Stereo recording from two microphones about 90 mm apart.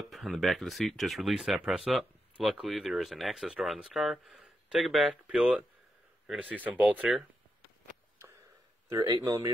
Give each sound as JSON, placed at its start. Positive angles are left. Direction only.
{"t": 0.1, "sound": "speech", "side_deg": 0}
{"t": 2.3, "sound": "speech", "side_deg": -10}
{"t": 9.2, "sound": "speech", "side_deg": -40}